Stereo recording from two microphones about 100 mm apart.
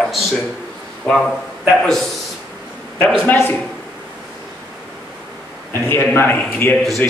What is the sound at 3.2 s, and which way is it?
Speech, 20° left (ahead or behind).